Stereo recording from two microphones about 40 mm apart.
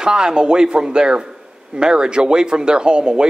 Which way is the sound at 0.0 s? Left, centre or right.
Centre.